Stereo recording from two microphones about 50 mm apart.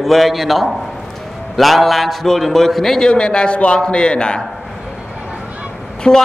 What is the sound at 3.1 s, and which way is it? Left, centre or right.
A man's voice, centre.